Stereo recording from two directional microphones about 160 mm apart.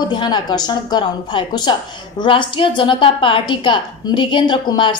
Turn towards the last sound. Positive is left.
turn(degrees=30)  # may be behind; listen again after turning